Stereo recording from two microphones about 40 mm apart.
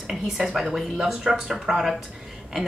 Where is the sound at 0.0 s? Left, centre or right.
Centre.